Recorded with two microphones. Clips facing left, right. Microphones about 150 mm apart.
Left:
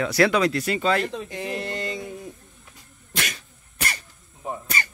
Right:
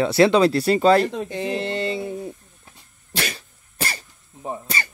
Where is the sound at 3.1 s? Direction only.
30° right (ahead or behind).